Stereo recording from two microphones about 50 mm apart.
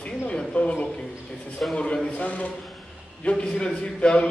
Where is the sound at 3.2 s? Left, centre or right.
Left.